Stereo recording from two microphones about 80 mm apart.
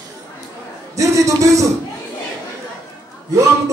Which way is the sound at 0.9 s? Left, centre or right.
Right.